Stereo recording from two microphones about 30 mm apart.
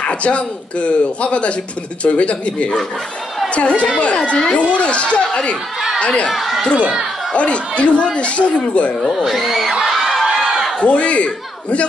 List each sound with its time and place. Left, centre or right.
0.0 s speech: left
6.3 s speech: centre
7.3 s speech: left
9.1 s speech: centre
9.7 s speech: centre
10.2 s a sound: centre
10.8 s a man's voice: left